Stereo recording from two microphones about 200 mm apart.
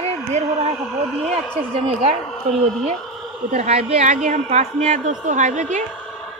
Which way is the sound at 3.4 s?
35° right (ahead or behind).